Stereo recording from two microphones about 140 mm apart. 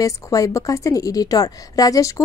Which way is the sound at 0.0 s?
25° left (ahead or behind).